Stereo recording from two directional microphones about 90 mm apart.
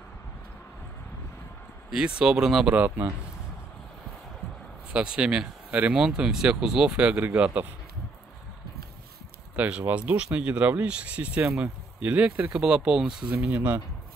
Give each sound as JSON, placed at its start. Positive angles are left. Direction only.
{"t": 1.9, "sound": "speech", "side_deg": -10}
{"t": 2.7, "sound": "speech", "side_deg": -20}
{"t": 4.9, "sound": "speech", "side_deg": -10}
{"t": 9.6, "sound": "speech", "side_deg": -15}